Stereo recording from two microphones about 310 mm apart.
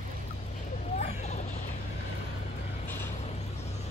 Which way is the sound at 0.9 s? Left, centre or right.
Left.